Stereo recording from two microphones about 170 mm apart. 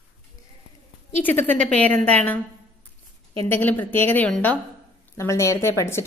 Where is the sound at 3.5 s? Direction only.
10° left (ahead or behind).